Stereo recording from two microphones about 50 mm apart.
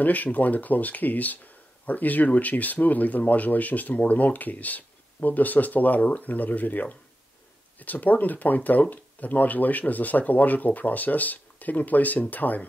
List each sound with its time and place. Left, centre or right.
0.0 s speech: left